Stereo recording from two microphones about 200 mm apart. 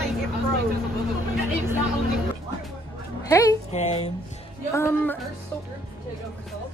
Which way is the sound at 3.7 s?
35° left (ahead or behind).